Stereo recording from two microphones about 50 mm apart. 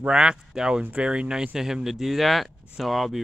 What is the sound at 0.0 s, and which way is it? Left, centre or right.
A man's voice, centre.